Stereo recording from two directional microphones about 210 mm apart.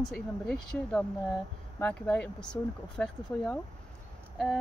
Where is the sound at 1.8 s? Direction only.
5° left (ahead or behind).